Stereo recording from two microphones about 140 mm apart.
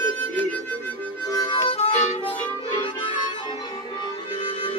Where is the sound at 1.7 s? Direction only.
50° left (ahead or behind).